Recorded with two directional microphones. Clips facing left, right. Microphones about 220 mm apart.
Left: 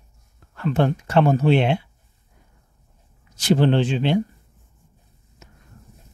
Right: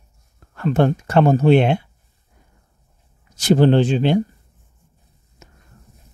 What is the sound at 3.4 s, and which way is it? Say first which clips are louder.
Speech: right 4 dB; 40° right (ahead or behind).